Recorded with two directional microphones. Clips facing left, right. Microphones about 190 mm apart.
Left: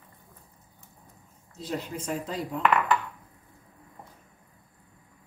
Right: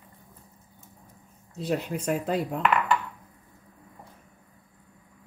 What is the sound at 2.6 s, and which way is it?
Dishes, centre (ahead or behind).